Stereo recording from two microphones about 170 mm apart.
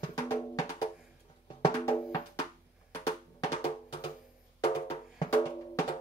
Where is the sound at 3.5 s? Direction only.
30° left (ahead or behind).